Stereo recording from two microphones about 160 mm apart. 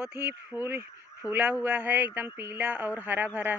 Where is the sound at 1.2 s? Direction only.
20° left (ahead or behind).